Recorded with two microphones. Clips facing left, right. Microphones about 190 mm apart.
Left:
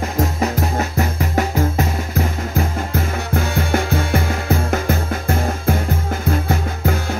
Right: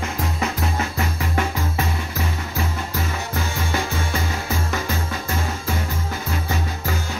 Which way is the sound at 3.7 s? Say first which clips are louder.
Left 7 dB; 55° left (ahead or behind).